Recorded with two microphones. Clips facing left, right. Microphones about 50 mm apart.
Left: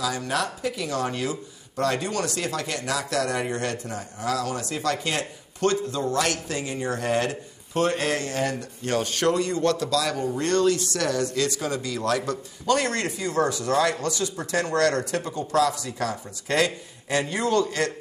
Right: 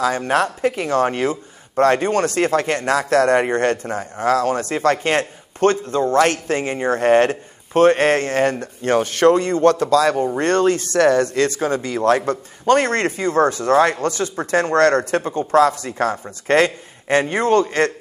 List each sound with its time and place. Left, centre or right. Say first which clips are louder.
0.0 s speech: right 8 dB; right